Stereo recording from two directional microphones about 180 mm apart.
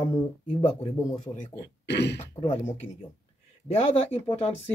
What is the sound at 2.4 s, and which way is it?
Speech, 30° left (ahead or behind).